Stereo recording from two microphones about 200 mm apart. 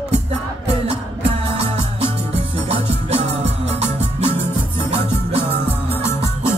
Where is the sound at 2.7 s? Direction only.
30° right (ahead or behind).